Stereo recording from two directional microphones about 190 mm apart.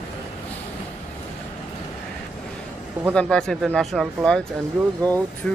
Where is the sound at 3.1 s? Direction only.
5° left (ahead or behind).